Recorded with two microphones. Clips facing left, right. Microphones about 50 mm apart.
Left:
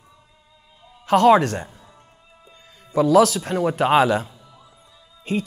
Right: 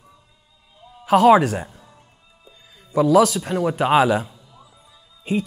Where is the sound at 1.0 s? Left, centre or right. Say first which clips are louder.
Right 1 dB; centre.